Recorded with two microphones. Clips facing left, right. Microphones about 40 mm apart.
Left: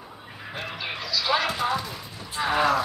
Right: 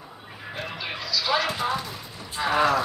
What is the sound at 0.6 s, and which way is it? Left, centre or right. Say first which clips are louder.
Clip-clop: even; centre.